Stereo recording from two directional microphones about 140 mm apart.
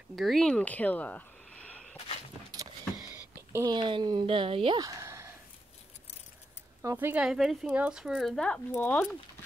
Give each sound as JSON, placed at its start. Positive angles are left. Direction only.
{"t": 0.1, "sound": "speech", "side_deg": 0}
{"t": 3.5, "sound": "speech", "side_deg": -30}
{"t": 4.7, "sound": "a sound", "side_deg": -20}
{"t": 6.8, "sound": "speech", "side_deg": -20}
{"t": 7.2, "sound": "speech", "side_deg": -5}